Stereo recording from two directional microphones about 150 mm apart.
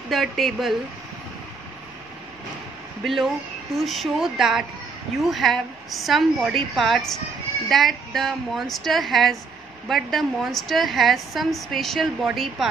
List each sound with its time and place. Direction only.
0.1 s a woman's voice: centre (ahead or behind)
3.0 s a woman's voice: centre (ahead or behind)